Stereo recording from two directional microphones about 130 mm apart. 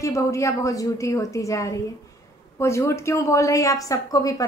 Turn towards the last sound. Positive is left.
turn(degrees=25)  # may be behind; listen again after turning